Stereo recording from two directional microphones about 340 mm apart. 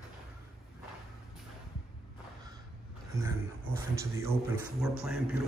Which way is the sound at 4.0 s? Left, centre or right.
Centre.